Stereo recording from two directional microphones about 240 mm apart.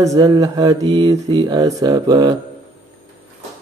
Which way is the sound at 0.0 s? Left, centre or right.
Centre.